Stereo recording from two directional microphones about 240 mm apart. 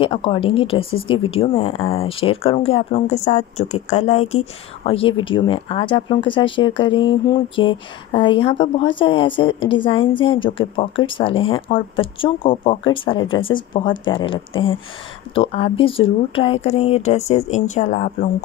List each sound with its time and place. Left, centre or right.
0.0 s speech: left